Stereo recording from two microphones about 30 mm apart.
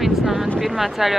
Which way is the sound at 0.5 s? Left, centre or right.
Centre.